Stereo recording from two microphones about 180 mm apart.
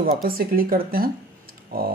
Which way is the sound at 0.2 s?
55° right (ahead or behind).